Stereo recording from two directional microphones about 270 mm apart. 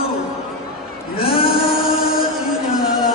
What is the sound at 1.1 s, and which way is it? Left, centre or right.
Music, left.